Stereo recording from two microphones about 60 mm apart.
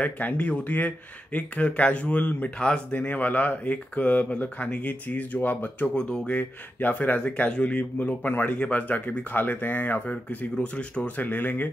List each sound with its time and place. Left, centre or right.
0.0 s speech: left
5.9 s speech: centre; by 11.7 s left